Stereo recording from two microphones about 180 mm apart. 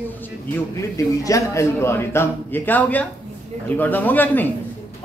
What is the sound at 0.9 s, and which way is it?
A man's voice, 15° left (ahead or behind).